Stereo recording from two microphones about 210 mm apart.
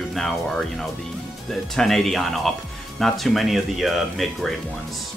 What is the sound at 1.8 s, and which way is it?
Speech, centre (ahead or behind).